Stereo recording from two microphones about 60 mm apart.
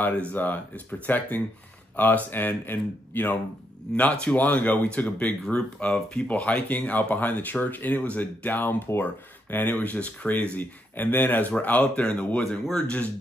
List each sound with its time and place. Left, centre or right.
0.0 s speech: left
3.9 s speech: left